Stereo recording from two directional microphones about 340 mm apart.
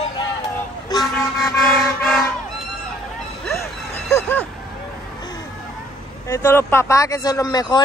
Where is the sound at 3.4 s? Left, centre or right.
Centre.